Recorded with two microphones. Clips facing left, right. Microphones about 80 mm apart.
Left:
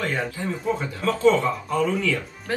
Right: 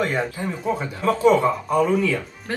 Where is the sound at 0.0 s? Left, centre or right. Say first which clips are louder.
Right 3 dB; centre.